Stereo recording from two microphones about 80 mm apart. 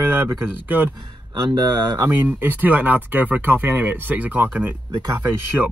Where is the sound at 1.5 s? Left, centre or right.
Right.